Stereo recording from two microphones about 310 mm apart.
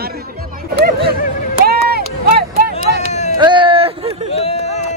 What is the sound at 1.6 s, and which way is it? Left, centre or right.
Run, right.